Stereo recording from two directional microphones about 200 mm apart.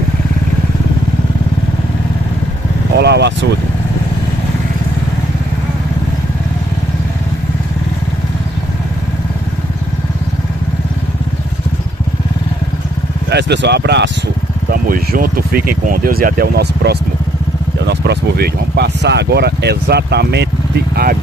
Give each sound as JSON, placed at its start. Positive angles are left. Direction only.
{"t": 3.0, "sound": "speech", "side_deg": -55}
{"t": 13.3, "sound": "speech", "side_deg": -60}
{"t": 14.7, "sound": "speech", "side_deg": -45}